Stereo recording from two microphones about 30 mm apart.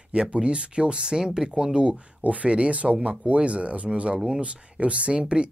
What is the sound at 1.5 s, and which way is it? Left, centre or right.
Speech, right.